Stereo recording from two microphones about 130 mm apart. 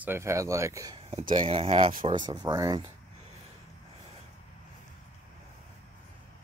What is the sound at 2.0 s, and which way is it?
Speech, 35° right (ahead or behind).